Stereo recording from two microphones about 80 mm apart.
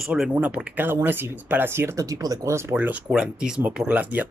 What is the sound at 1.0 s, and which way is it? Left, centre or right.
Speech, right.